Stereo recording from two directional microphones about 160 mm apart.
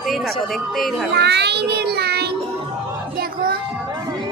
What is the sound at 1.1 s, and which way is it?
Child singing, 90° right.